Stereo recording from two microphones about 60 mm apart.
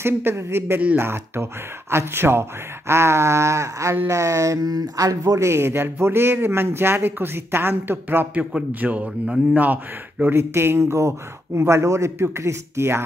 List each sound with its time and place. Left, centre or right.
0.0 s speech: right
5.4 s speech: right
8.8 s speech: right
10.3 s speech: right